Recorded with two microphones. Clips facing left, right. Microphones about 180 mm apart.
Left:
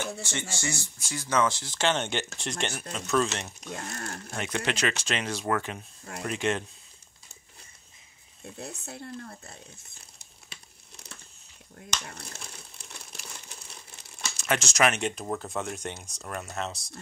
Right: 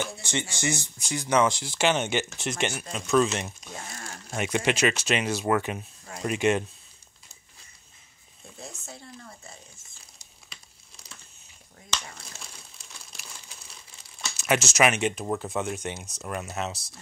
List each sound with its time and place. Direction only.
0.2 s speech: 15° right (ahead or behind)
3.7 s speech: 65° left (ahead or behind)
4.4 s speech: 15° right (ahead or behind)
8.8 s speech: 60° left (ahead or behind)
12.1 s crumpling: 60° left (ahead or behind)
14.3 s speech: 5° right (ahead or behind)